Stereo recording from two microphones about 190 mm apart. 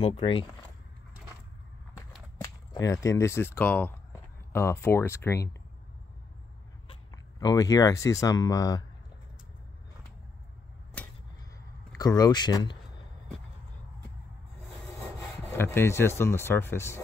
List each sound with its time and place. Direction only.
0.0 s speech: 30° left (ahead or behind)
2.4 s cap gun: 20° left (ahead or behind)
4.5 s speech: 10° left (ahead or behind)
7.1 s speech: 20° left (ahead or behind)
12.0 s speech: 20° left (ahead or behind)
15.5 s speech: 10° left (ahead or behind)